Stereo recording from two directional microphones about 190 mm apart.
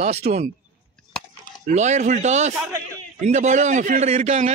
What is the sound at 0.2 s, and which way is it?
Speech, 40° right (ahead or behind).